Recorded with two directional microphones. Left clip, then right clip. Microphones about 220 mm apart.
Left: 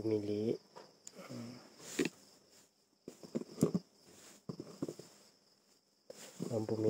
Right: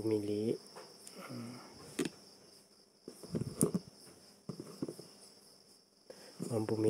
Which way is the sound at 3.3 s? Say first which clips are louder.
Even; 5° right (ahead or behind).